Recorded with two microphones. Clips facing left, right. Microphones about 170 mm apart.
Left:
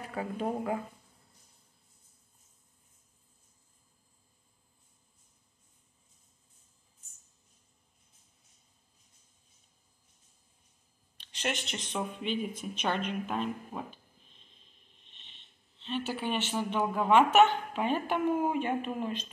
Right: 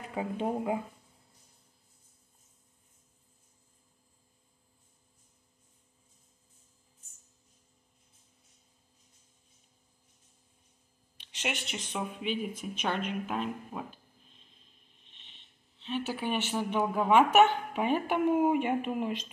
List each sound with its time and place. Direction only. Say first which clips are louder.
0.1 s speech: right 2 dB; 15° right (ahead or behind)
11.3 s speech: left 1 dB; 10° right (ahead or behind)
15.0 s speech: even; 5° right (ahead or behind)